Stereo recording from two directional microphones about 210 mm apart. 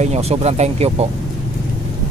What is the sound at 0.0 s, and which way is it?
Speech, 30° right (ahead or behind).